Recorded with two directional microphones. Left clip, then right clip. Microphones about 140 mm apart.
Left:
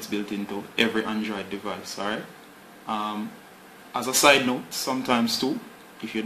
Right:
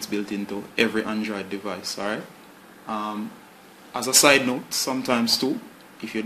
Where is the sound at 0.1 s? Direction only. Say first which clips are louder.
Right 1 dB; 30° right (ahead or behind).